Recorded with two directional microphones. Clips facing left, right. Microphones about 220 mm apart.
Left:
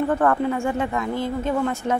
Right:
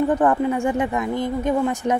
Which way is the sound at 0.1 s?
15° right (ahead or behind).